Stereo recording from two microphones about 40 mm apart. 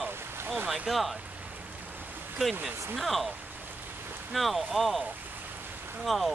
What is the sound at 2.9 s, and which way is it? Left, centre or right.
Speech, centre.